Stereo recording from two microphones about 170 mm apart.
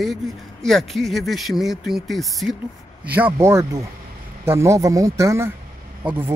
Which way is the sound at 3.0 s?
10° right (ahead or behind).